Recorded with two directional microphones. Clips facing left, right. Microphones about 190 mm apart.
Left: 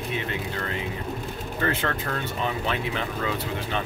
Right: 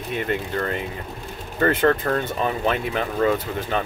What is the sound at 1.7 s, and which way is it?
Speech, 50° right (ahead or behind).